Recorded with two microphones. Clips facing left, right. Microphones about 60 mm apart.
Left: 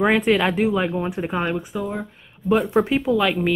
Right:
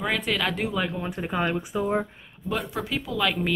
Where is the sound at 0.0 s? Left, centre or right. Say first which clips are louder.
Left 8 dB; left; by 1.6 s centre.